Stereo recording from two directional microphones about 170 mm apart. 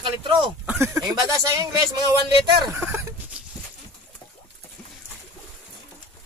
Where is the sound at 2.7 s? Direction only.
15° right (ahead or behind).